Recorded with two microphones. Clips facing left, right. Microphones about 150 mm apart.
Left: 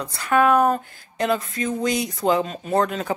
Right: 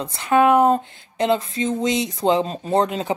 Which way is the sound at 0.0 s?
20° right (ahead or behind).